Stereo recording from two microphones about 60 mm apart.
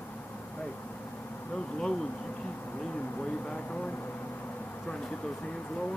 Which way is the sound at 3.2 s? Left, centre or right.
Centre.